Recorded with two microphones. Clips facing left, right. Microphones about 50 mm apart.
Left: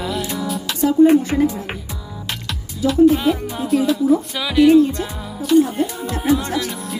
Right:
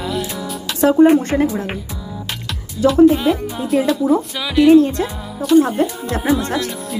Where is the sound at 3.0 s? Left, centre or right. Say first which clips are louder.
Right 2 dB; centre.